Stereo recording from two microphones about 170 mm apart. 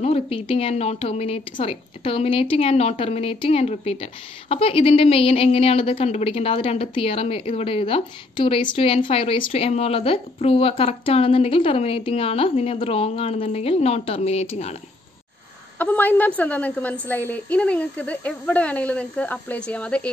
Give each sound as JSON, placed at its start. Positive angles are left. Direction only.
{"t": 0.0, "sound": "speech", "side_deg": 35}
{"t": 15.8, "sound": "a woman's voice", "side_deg": 10}